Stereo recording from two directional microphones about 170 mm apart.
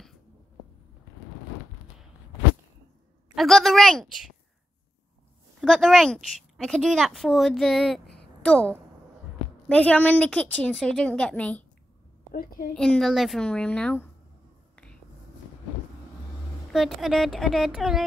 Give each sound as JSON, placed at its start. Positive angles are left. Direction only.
{"t": 3.3, "sound": "a woman's voice", "side_deg": 0}
{"t": 5.6, "sound": "a woman's voice", "side_deg": 0}
{"t": 12.3, "sound": "a woman's voice", "side_deg": 55}
{"t": 12.7, "sound": "a woman's voice", "side_deg": 5}
{"t": 16.7, "sound": "a woman's voice", "side_deg": 0}